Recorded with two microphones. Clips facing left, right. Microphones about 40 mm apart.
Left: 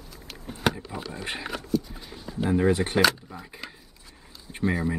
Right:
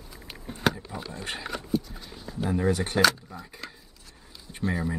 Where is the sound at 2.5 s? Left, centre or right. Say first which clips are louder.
Left 4 dB; left.